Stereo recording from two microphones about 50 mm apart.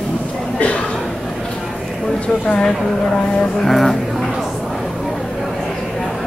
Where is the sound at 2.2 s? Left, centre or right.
Left.